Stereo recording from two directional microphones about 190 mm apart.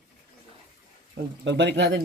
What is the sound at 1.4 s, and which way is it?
Speech, 65° right (ahead or behind).